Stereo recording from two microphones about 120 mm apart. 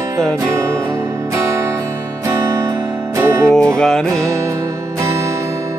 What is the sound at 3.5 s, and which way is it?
Music, 5° left (ahead or behind).